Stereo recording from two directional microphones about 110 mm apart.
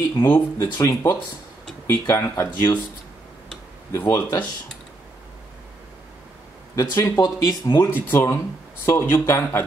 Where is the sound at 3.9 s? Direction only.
25° left (ahead or behind).